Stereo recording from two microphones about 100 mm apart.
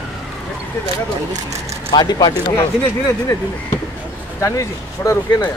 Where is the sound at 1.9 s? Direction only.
45° left (ahead or behind).